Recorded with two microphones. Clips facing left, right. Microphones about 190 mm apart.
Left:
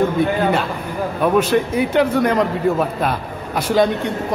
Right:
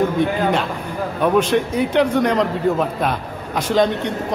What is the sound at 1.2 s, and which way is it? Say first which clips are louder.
A man's voice: even; 5° left (ahead or behind).